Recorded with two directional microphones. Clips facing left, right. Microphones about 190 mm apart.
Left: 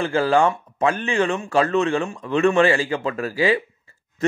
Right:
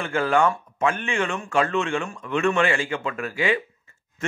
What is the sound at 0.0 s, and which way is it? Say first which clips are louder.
A man's voice: left 3 dB; 30° left (ahead or behind).